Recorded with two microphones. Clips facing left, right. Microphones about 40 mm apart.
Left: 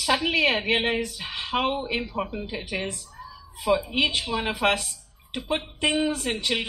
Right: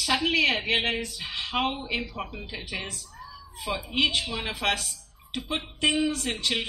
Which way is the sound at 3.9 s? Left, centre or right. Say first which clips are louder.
Left 1 dB; left.